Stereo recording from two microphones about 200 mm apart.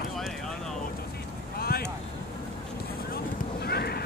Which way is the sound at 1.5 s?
50° left (ahead or behind).